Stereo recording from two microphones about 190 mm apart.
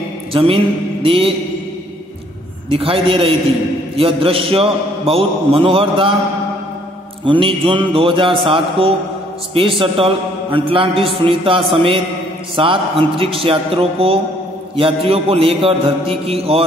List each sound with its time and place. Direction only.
0.3 s a man's voice: 30° right (ahead or behind)
2.7 s a man's voice: 30° right (ahead or behind)
7.2 s a man's voice: 25° right (ahead or behind)